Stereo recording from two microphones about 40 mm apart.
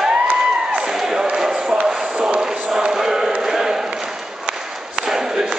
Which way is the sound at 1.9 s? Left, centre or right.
Centre.